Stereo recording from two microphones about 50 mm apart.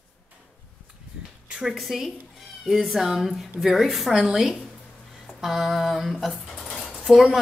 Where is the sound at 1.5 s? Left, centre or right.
Centre.